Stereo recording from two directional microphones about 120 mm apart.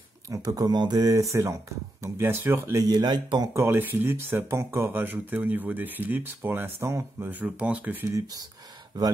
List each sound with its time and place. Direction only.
0.3 s speech: 30° right (ahead or behind)
2.9 s speech: 40° right (ahead or behind)
3.5 s speech: 20° right (ahead or behind)
8.1 s speech: 30° right (ahead or behind)